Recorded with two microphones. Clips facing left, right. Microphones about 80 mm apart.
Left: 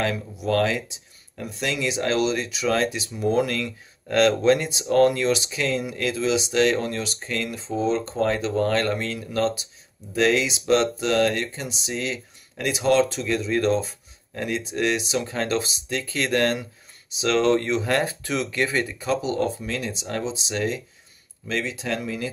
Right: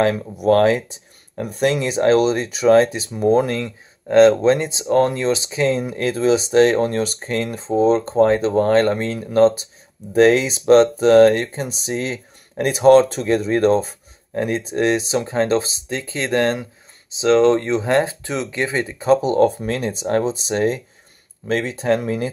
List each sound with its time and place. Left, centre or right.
0.0 s speech: right